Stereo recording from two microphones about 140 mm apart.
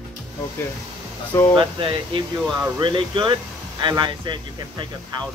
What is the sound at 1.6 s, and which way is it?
Speech, 35° right (ahead or behind).